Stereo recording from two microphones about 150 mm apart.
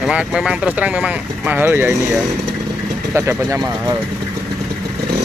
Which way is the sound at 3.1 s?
20° right (ahead or behind).